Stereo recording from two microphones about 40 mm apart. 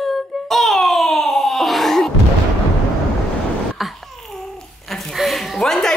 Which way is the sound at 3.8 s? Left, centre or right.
Centre.